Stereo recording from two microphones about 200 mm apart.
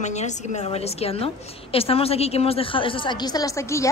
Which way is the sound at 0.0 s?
35° left (ahead or behind).